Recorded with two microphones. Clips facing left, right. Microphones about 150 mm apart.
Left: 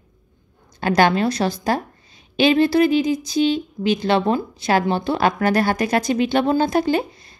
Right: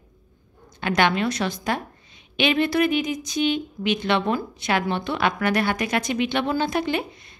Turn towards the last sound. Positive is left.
turn(degrees=35)  # may be behind; listen again after turning